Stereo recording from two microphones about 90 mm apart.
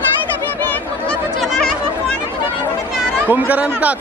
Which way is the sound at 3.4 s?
15° right (ahead or behind).